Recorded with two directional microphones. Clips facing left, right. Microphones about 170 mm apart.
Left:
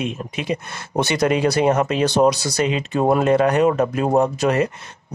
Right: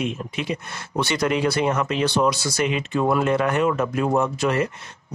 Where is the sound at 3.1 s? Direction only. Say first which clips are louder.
Left 5 dB; 40° left (ahead or behind).